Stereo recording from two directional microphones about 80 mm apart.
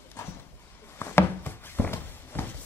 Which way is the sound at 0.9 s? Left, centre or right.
Left.